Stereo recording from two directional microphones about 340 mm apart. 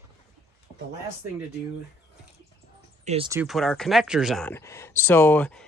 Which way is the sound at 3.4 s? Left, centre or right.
Centre.